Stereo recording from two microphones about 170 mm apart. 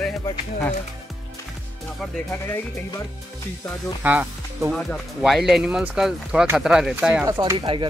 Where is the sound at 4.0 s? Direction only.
10° right (ahead or behind).